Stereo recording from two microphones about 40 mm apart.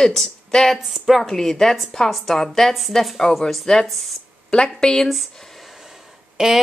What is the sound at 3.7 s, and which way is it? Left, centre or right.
A woman's voice, centre.